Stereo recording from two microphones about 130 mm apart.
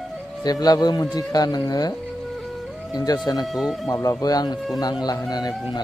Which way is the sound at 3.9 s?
25° left (ahead or behind).